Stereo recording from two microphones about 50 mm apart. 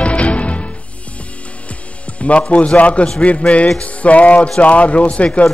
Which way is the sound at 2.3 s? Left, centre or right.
Left.